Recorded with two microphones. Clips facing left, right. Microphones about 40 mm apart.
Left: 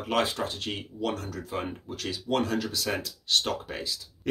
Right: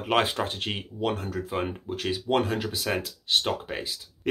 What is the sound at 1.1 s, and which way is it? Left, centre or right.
Speech, right.